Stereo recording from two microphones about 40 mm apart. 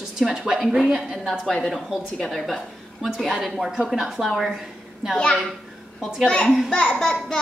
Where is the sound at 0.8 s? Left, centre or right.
Centre.